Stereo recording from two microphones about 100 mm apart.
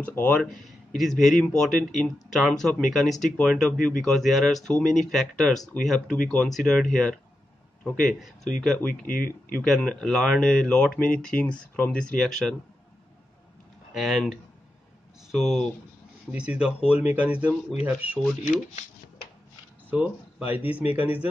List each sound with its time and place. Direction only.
0.0 s speech: 15° left (ahead or behind)
0.4 s speech: centre (ahead or behind)
13.9 s speech: centre (ahead or behind); by 18.2 s 15° right (ahead or behind)
19.9 s speech: 15° right (ahead or behind)